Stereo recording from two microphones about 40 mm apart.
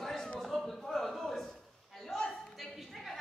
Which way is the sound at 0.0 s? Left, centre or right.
Centre.